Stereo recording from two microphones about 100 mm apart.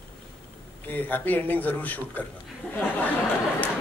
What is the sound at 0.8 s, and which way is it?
Speech, 20° left (ahead or behind).